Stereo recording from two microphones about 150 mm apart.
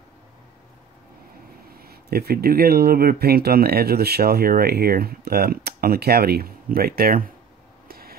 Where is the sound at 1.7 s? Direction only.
90° right; by 7.3 s 75° right (ahead or behind).